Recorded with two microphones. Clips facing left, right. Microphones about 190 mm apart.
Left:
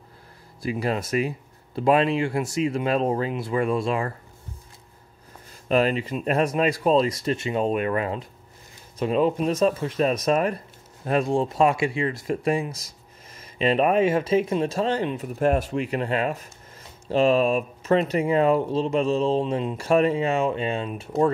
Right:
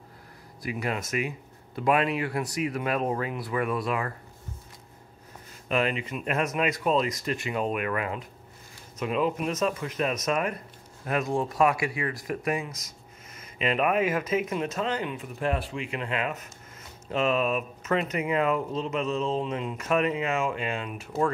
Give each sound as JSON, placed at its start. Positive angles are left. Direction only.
{"t": 0.6, "sound": "speech", "side_deg": 30}
{"t": 5.7, "sound": "speech", "side_deg": 35}